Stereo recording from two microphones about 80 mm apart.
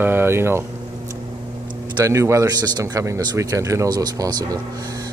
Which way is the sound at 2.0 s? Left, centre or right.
Right.